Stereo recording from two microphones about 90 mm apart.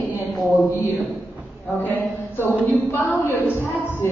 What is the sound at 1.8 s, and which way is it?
Speech, 20° left (ahead or behind).